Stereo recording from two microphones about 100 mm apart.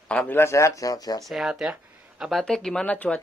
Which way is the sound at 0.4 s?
30° left (ahead or behind).